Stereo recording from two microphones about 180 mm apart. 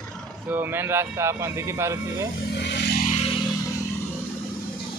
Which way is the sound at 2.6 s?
70° left (ahead or behind).